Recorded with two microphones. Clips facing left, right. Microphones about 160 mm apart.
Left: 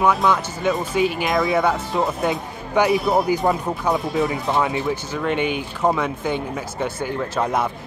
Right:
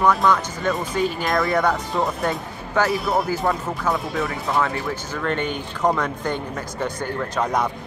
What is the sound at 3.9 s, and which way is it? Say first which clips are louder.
Speech: left 4 dB; centre (ahead or behind).